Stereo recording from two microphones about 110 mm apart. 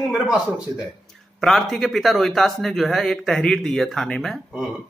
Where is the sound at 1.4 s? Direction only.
Centre (ahead or behind).